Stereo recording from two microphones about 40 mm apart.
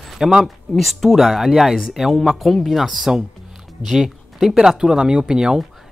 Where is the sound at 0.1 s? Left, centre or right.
Centre.